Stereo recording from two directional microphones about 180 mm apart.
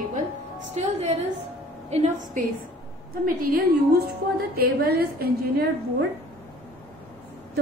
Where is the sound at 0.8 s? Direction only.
35° right (ahead or behind).